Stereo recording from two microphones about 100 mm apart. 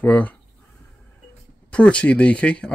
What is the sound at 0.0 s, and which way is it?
Speech, 15° left (ahead or behind).